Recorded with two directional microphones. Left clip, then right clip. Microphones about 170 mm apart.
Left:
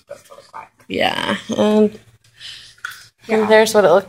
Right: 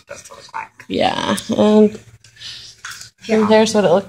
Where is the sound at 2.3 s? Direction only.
10° right (ahead or behind).